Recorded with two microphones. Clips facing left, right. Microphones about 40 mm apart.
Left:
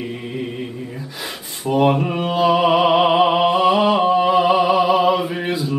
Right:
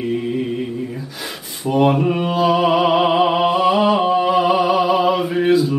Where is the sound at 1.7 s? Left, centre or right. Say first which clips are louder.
Right 1 dB; centre.